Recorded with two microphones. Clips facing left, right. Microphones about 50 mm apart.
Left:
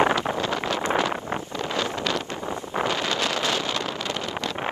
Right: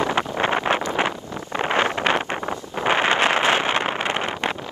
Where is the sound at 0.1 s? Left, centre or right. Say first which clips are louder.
Right 3 dB; right.